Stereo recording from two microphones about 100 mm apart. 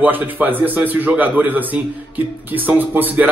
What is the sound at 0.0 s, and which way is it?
Speech, 20° right (ahead or behind).